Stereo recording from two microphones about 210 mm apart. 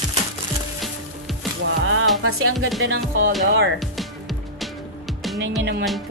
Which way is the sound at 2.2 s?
90° right.